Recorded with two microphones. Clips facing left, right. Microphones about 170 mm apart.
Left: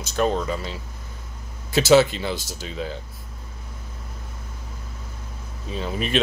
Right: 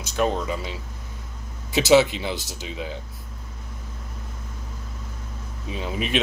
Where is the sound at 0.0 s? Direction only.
10° right (ahead or behind).